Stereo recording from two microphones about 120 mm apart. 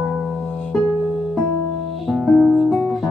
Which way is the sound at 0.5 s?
10° left (ahead or behind).